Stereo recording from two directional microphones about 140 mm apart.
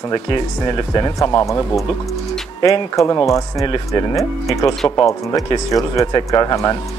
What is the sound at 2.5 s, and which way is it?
Speech, 25° left (ahead or behind).